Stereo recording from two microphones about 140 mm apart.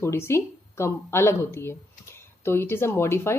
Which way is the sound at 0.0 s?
20° left (ahead or behind).